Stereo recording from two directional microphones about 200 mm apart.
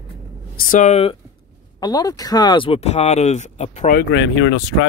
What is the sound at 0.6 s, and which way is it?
Speech, 40° left (ahead or behind).